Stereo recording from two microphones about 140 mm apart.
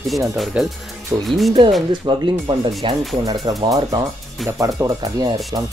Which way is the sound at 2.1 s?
35° right (ahead or behind).